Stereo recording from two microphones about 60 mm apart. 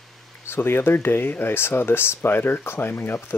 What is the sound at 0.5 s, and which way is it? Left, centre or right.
Speech, left.